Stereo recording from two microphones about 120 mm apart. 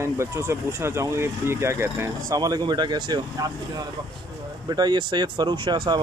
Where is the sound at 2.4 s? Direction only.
35° right (ahead or behind).